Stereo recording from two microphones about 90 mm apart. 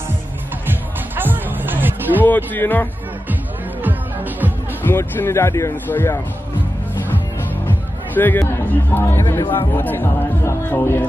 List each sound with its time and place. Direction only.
0.7 s music: 20° right (ahead or behind)
2.2 s speech: 20° left (ahead or behind)
3.8 s music: 20° right (ahead or behind)
4.8 s speech: 25° left (ahead or behind)
7.6 s speech: 20° left (ahead or behind)